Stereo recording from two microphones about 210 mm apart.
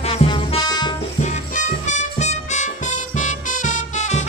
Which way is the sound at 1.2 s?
35° left (ahead or behind).